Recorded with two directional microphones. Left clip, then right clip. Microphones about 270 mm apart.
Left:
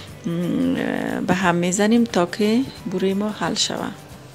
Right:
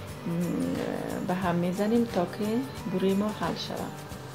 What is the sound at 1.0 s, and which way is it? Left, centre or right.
Speech, left.